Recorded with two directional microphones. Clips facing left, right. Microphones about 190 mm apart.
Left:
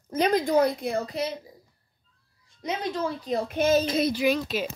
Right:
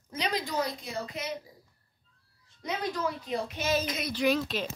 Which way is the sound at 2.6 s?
20° left (ahead or behind).